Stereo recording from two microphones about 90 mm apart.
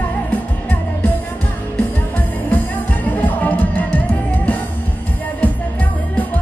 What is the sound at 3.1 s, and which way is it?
Music, 20° left (ahead or behind).